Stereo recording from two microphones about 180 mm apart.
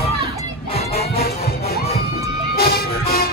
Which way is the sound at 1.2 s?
60° left (ahead or behind).